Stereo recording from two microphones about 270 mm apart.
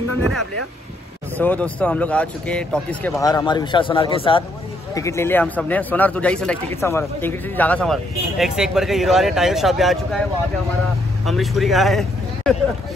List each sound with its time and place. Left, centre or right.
1.4 s speech: centre
11.2 s speech: centre